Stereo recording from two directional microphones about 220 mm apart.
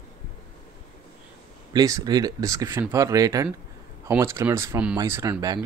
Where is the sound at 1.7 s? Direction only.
15° right (ahead or behind).